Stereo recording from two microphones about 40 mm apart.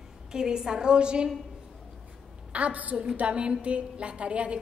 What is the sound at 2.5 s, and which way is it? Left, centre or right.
A woman's voice, right.